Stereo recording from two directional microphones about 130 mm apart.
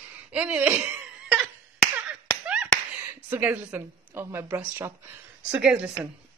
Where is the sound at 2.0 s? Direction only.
10° right (ahead or behind).